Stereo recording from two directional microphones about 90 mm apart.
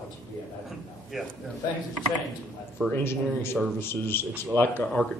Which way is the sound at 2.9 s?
25° left (ahead or behind).